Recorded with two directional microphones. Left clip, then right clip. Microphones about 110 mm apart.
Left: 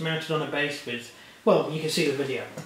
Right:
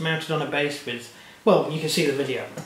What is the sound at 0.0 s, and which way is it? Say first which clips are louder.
Speech: right 2 dB; 15° right (ahead or behind).